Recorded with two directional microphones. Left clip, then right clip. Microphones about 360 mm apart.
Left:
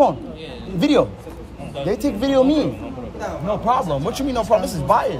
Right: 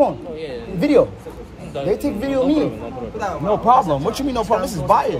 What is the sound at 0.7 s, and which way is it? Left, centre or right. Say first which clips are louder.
Speech: right 2 dB; centre.